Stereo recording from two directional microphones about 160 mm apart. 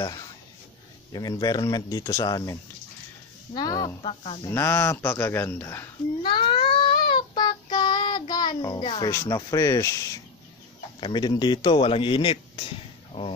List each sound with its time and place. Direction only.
1.1 s speech: 25° left (ahead or behind)
4.5 s speech: 15° left (ahead or behind)
6.2 s child singing: 30° left (ahead or behind)
9.1 s speech: 20° left (ahead or behind)
11.0 s speech: 30° left (ahead or behind)